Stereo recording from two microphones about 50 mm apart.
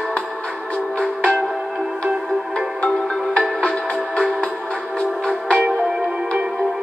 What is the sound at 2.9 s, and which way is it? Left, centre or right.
Music, centre.